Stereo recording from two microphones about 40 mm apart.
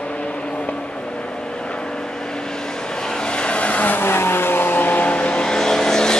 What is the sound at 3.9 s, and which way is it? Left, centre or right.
Vehicle, left.